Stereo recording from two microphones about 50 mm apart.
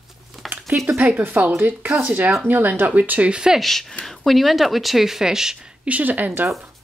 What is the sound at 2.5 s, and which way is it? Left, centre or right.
Speech, right.